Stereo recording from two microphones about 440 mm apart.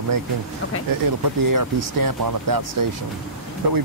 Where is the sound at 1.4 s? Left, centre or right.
Right.